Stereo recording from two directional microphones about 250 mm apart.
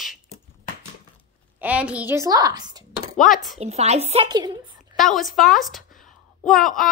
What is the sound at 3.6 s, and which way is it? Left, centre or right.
A woman's voice, right.